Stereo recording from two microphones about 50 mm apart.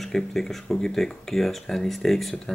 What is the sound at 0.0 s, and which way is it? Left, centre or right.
Speech, centre.